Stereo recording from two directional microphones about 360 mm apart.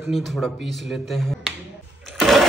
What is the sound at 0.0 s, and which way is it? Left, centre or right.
Speech, centre.